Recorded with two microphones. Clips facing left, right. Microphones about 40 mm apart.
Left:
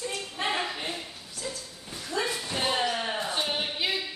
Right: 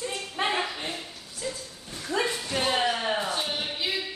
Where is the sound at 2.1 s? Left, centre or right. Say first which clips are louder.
Right 2 dB; right.